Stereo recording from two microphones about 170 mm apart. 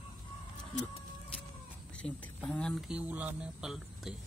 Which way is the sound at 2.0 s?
10° left (ahead or behind).